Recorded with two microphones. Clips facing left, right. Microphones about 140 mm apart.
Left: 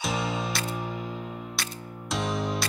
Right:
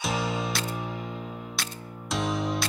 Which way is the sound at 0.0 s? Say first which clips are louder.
Even; centre (ahead or behind).